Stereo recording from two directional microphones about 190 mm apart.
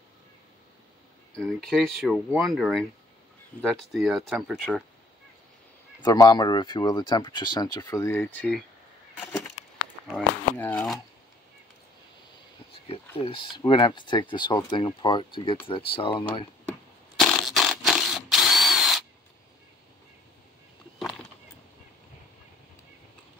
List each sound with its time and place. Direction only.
1.4 s speech: centre (ahead or behind)
6.0 s speech: 20° left (ahead or behind)
10.0 s speech: 5° left (ahead or behind)
13.2 s speech: 25° left (ahead or behind)
17.2 s drill: centre (ahead or behind)